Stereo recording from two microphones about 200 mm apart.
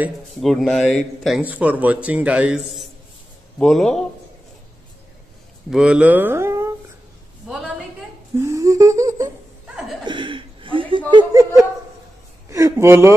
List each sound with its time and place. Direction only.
0.0 s a man's voice: centre (ahead or behind)
5.7 s a man's voice: 5° right (ahead or behind)
7.4 s a sound: 5° right (ahead or behind)
8.4 s humming: 15° right (ahead or behind)
10.0 s chuckle: 25° right (ahead or behind)
12.4 s a man's voice: 15° right (ahead or behind)